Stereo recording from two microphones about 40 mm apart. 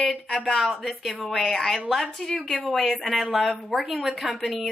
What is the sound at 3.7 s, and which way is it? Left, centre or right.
A woman's voice, centre.